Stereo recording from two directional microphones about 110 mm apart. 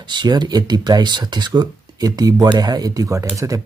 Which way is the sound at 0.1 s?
40° right (ahead or behind).